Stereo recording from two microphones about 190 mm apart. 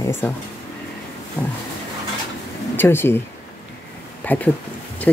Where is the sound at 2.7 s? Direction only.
10° left (ahead or behind).